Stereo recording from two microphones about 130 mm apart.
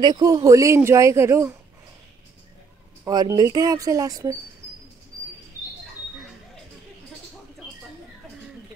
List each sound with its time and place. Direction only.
0.0 s speech: 30° right (ahead or behind)
3.1 s speech: 30° right (ahead or behind)